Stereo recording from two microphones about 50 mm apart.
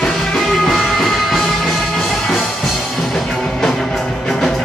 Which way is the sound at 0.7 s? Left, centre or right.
Centre.